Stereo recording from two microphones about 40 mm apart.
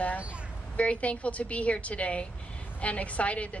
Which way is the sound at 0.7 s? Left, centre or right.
Left.